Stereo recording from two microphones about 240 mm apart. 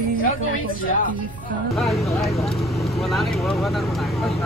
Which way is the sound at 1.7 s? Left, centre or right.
Centre.